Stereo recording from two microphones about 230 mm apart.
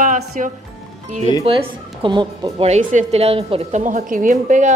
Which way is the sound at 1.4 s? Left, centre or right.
Right.